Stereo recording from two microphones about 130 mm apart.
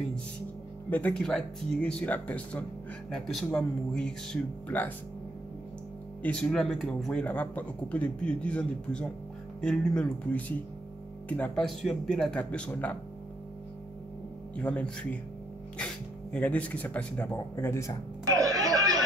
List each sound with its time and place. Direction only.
0.8 s speech: 10° left (ahead or behind)
6.2 s speech: 5° left (ahead or behind)
14.6 s speech: 10° left (ahead or behind)
18.3 s music: 30° right (ahead or behind)